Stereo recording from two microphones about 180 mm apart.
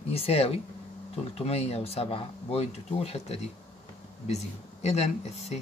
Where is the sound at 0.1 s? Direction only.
35° left (ahead or behind).